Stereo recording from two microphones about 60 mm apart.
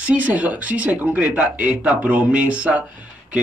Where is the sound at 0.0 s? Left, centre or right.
Right.